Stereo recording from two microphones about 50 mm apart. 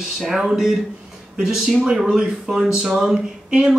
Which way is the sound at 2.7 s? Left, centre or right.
Right.